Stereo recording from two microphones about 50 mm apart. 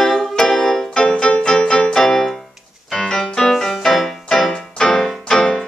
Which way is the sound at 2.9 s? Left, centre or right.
Centre.